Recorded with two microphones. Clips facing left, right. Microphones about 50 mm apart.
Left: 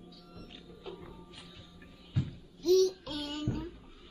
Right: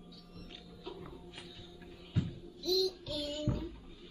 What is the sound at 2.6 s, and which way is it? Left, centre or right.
Babbling, left.